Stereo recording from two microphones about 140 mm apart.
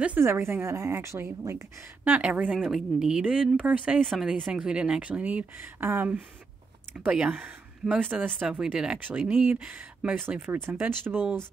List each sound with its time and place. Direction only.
0.0 s speech: 15° right (ahead or behind)
4.0 s speech: centre (ahead or behind)